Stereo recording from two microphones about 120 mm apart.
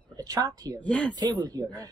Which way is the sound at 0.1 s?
30° right (ahead or behind).